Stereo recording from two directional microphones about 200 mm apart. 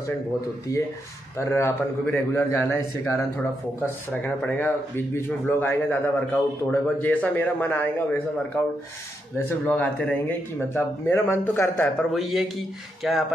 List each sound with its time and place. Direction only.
0.7 s speech: 15° left (ahead or behind)
9.4 s speech: 10° left (ahead or behind)
12.1 s speech: centre (ahead or behind)